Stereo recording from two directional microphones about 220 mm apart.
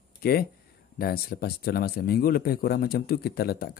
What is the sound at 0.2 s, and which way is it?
Speech, 45° left (ahead or behind).